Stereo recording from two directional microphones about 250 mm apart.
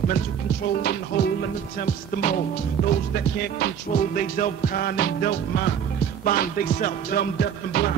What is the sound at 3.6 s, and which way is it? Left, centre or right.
Music, left.